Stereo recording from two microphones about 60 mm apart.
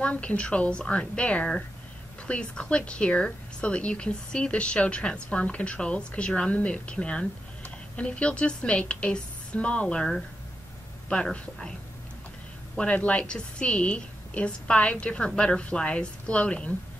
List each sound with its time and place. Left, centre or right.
0.0 s a woman's voice: left
12.7 s a woman's voice: left